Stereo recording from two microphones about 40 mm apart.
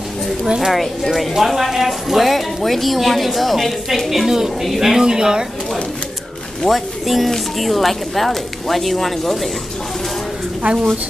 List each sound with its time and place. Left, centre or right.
0.6 s speech: centre
4.1 s speech: centre
5.0 s speech: centre
6.6 s speech: centre
10.6 s a woman's voice: right